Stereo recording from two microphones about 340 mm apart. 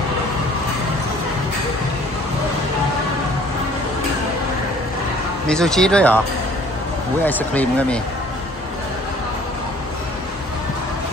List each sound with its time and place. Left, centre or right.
5.5 s speech: centre
7.2 s speech: centre